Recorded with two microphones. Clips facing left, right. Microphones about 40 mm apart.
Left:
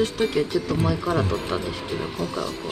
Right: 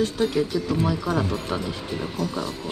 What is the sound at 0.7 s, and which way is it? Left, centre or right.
Speech, centre.